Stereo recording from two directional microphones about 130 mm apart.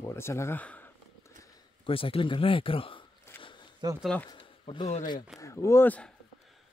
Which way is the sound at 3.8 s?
30° right (ahead or behind).